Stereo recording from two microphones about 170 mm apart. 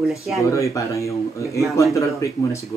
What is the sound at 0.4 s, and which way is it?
Speech, 15° left (ahead or behind).